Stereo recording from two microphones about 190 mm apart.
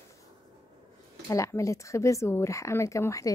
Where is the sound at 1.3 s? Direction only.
15° left (ahead or behind).